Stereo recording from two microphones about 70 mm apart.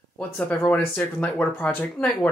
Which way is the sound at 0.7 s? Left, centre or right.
Centre.